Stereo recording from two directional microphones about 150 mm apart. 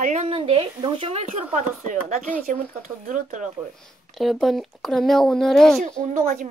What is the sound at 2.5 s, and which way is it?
A woman's voice, 55° right (ahead or behind).